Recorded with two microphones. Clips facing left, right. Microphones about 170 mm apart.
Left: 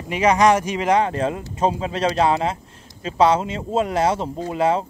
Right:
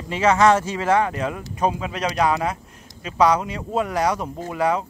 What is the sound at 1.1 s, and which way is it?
Speech, 30° left (ahead or behind).